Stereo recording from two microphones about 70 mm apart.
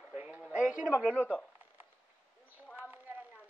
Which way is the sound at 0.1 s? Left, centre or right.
Right.